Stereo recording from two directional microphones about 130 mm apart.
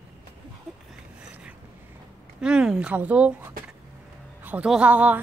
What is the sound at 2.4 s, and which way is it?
Speech, 5° right (ahead or behind).